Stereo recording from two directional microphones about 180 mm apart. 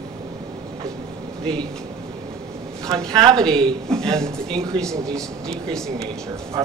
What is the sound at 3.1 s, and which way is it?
Speech, 25° right (ahead or behind).